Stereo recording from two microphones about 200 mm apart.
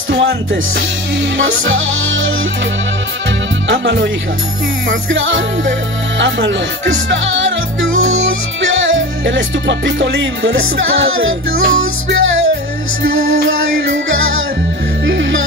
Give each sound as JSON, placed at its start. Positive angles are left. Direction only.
{"t": 0.1, "sound": "music", "side_deg": -60}
{"t": 1.4, "sound": "music", "side_deg": -75}
{"t": 3.6, "sound": "speech", "side_deg": -65}
{"t": 4.8, "sound": "music", "side_deg": -70}
{"t": 8.9, "sound": "music", "side_deg": -70}
{"t": 11.2, "sound": "music", "side_deg": -80}